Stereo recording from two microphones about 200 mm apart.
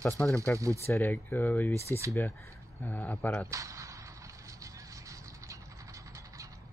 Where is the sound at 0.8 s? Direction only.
10° left (ahead or behind).